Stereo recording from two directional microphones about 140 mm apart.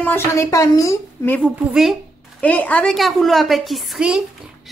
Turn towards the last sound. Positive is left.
turn(degrees=-5)  # may be behind; listen again after turning